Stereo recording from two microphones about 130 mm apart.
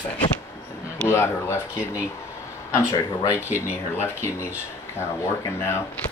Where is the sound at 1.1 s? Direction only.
20° left (ahead or behind).